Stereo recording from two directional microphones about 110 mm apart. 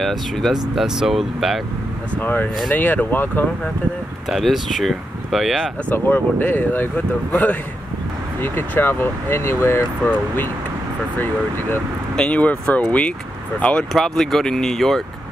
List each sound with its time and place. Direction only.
0.0 s speech: centre (ahead or behind)
2.1 s speech: 15° left (ahead or behind)
4.3 s speech: centre (ahead or behind)
5.9 s speech: 15° left (ahead or behind)
8.4 s speech: 20° left (ahead or behind)
11.1 s speech: 20° left (ahead or behind); by 15.0 s 5° left (ahead or behind)